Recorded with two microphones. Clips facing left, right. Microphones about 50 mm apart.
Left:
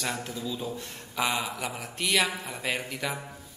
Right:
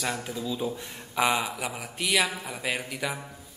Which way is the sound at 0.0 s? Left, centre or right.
Centre.